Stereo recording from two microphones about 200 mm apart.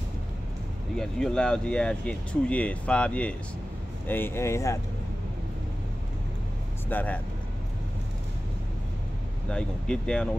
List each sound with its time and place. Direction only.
0.9 s speech: 5° left (ahead or behind)
6.9 s speech: 10° left (ahead or behind)
9.5 s speech: 5° left (ahead or behind)